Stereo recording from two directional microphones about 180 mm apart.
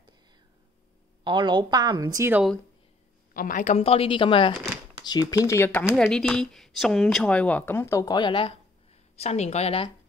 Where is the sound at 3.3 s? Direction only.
50° left (ahead or behind); by 5.9 s 15° left (ahead or behind).